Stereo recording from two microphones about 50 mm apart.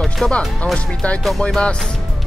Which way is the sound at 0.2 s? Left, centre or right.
Centre.